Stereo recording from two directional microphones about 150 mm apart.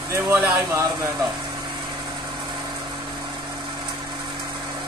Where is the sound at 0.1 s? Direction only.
15° right (ahead or behind).